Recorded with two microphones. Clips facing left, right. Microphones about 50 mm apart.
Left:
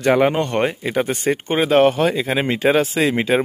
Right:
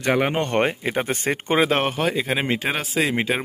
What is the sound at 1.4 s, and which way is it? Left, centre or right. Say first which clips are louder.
Speech: right 4 dB; right.